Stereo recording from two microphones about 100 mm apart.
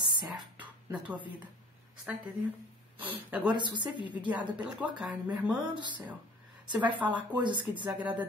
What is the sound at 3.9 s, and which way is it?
Speech, 50° left (ahead or behind).